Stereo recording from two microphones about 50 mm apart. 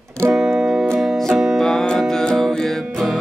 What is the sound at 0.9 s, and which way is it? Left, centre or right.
Music, centre.